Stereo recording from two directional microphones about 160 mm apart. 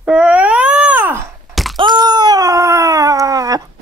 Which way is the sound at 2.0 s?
25° right (ahead or behind).